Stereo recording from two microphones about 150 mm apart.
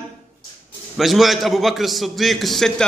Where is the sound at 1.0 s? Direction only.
Centre (ahead or behind).